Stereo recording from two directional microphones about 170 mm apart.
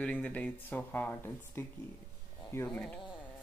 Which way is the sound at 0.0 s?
5° left (ahead or behind).